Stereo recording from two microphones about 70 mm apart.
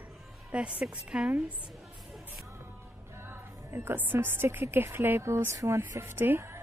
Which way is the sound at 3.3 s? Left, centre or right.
Right.